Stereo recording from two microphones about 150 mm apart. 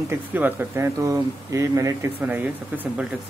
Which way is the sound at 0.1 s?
10° right (ahead or behind).